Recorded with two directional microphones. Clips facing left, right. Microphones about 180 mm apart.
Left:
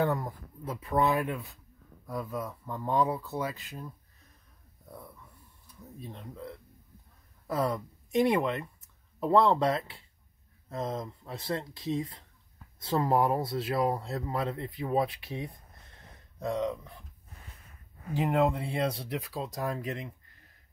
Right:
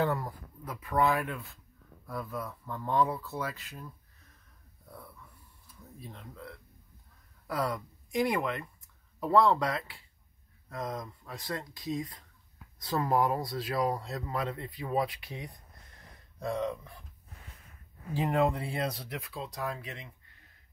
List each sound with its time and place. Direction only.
0.0 s speech: 20° left (ahead or behind)
4.8 s wheeze: 20° left (ahead or behind)
5.9 s speech: 20° left (ahead or behind)
16.3 s a sound: 20° left (ahead or behind)
18.1 s speech: 25° left (ahead or behind); by 20.1 s 40° left (ahead or behind)